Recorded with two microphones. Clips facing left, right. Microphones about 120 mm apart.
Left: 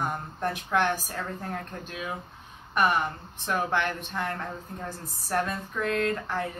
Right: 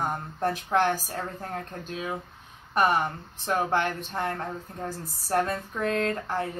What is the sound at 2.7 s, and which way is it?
Speech, 35° right (ahead or behind).